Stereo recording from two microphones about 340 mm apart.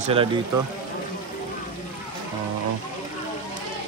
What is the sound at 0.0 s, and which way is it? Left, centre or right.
Speech, centre.